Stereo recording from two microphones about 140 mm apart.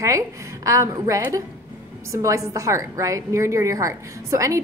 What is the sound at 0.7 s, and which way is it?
A woman's voice, 20° right (ahead or behind).